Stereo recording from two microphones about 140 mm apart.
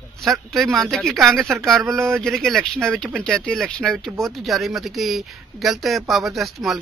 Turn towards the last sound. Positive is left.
turn(degrees=0)  # may be behind; listen again after turning